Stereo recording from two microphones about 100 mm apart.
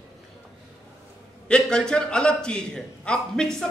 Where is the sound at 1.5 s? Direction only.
10° left (ahead or behind).